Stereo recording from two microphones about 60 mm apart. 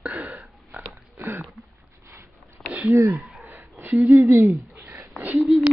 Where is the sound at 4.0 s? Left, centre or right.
Right.